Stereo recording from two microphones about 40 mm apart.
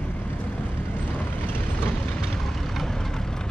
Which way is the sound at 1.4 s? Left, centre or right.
Left.